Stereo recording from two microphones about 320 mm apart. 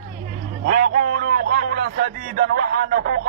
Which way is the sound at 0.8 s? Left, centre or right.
Right.